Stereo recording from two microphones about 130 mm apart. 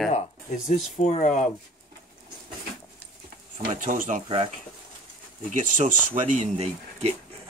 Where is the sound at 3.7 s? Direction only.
85° right.